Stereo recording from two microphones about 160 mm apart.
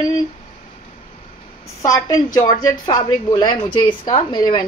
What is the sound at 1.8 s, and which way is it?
A woman's voice, 20° left (ahead or behind).